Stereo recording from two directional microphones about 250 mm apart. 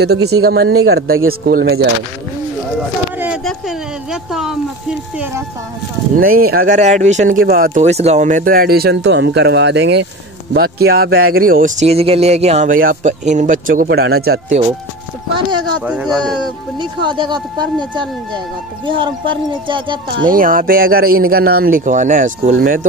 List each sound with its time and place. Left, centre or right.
0.3 s speech: right
3.2 s speech: centre
6.1 s speech: right
15.8 s speech: centre
16.7 s speech: centre
20.2 s speech: right